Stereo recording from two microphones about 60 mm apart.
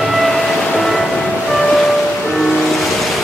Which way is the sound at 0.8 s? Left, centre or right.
Centre.